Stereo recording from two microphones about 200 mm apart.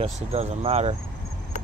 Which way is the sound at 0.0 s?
30° right (ahead or behind).